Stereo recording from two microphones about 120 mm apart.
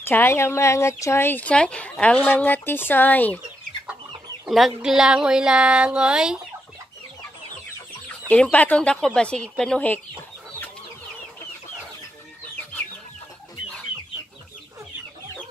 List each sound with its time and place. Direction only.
0.0 s speech: 20° left (ahead or behind)
4.5 s speech: centre (ahead or behind)
8.3 s speech: 10° left (ahead or behind)